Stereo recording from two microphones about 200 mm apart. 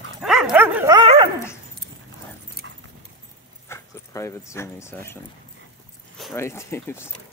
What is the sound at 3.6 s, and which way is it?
Speech, 15° left (ahead or behind).